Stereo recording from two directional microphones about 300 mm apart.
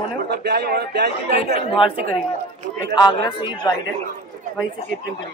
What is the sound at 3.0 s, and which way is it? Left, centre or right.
Speech, centre.